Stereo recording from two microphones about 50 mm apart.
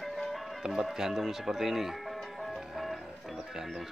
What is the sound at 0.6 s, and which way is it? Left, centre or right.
Music, centre.